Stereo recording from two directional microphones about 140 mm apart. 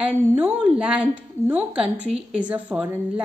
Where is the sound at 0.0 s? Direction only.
15° right (ahead or behind).